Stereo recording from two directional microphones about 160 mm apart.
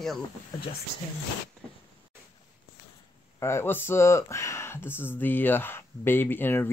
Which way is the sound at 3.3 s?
15° left (ahead or behind).